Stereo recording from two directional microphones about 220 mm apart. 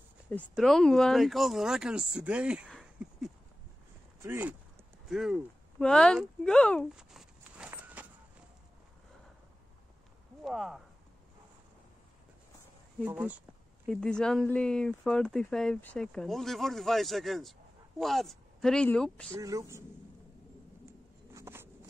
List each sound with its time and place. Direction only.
0.4 s speech: centre (ahead or behind)
5.0 s a sound: centre (ahead or behind)
10.4 s speech: centre (ahead or behind)
13.0 s speech: 5° right (ahead or behind)
19.3 s speech: 15° right (ahead or behind)
20.8 s a sound: 10° right (ahead or behind)